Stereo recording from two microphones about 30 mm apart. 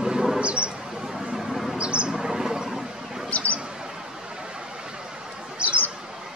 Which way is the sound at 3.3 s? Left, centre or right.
Left.